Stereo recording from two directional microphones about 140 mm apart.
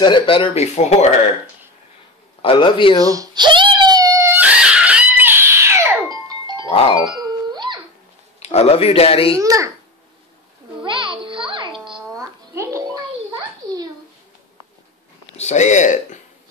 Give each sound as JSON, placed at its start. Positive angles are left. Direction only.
{"t": 0.0, "sound": "a man's voice", "side_deg": 35}
{"t": 0.6, "sound": "speech", "side_deg": 55}
{"t": 2.4, "sound": "a man's voice", "side_deg": 35}
{"t": 3.0, "sound": "screaming", "side_deg": -25}
{"t": 7.0, "sound": "a sound", "side_deg": -30}
{"t": 8.4, "sound": "speech", "side_deg": 50}
{"t": 9.4, "sound": "a child's voice", "side_deg": -25}
{"t": 10.8, "sound": "music", "side_deg": -35}
{"t": 12.2, "sound": "music", "side_deg": -20}
{"t": 15.3, "sound": "speech", "side_deg": 55}